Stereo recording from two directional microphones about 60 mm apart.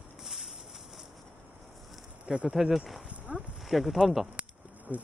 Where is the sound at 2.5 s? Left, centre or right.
Centre.